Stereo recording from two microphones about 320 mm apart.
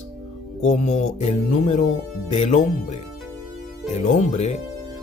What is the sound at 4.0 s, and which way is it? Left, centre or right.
Music, left.